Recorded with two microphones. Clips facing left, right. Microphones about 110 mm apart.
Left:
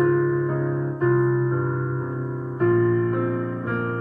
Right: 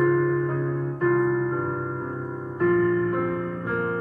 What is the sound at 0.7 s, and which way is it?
Music, 25° left (ahead or behind).